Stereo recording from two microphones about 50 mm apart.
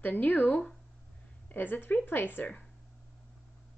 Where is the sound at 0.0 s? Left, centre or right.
Left.